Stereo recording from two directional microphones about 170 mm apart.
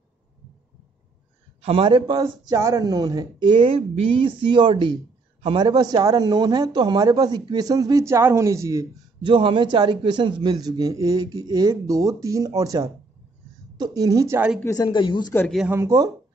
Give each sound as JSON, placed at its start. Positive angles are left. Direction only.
{"t": 1.6, "sound": "a man's voice", "side_deg": -35}
{"t": 14.6, "sound": "speech", "side_deg": 20}
{"t": 15.7, "sound": "speech", "side_deg": -20}